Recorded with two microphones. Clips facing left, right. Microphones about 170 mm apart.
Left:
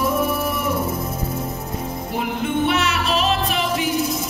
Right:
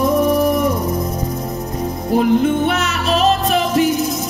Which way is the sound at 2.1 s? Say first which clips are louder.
Right 10 dB; 40° right (ahead or behind).